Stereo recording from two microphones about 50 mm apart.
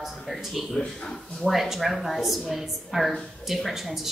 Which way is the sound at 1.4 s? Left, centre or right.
Centre.